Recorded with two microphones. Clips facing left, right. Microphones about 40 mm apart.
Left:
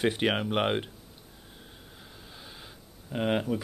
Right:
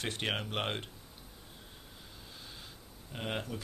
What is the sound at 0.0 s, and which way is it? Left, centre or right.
Speech, centre.